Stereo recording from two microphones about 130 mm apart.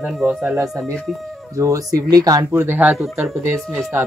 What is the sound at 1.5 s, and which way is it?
Speech, 25° right (ahead or behind).